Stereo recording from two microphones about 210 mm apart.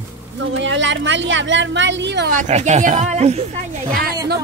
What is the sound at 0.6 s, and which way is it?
A woman's voice, 60° right (ahead or behind).